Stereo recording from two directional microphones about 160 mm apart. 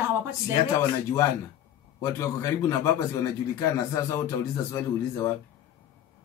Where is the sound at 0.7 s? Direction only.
20° left (ahead or behind).